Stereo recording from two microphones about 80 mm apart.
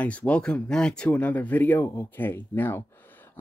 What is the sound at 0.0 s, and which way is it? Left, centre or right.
Speech, centre.